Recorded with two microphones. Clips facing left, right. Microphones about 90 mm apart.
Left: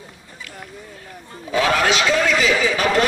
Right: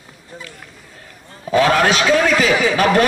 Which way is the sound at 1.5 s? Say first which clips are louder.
Right 4 dB; 45° right (ahead or behind).